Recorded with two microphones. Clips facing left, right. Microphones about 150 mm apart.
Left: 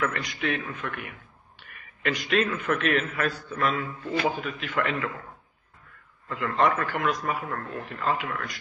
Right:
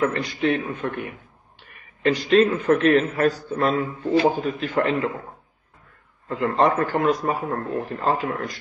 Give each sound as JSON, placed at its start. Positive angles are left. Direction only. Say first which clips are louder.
{"t": 0.0, "sound": "a man's voice", "louder": "right 7 dB", "side_deg": -30}
{"t": 6.2, "sound": "a man's voice", "louder": "right 4 dB", "side_deg": -35}